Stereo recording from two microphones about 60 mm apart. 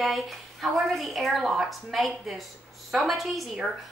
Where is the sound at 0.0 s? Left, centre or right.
Centre.